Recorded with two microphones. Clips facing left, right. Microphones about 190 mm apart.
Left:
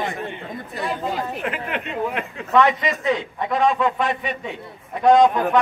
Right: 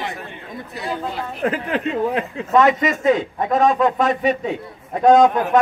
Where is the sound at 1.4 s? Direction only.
35° right (ahead or behind).